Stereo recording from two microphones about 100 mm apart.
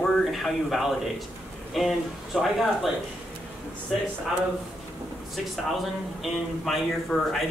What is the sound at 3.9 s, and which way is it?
Speech, centre (ahead or behind).